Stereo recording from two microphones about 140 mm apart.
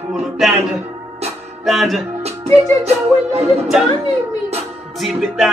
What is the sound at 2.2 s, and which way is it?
Music, 50° right (ahead or behind).